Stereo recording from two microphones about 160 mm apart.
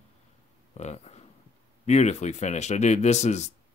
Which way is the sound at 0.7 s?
45° left (ahead or behind).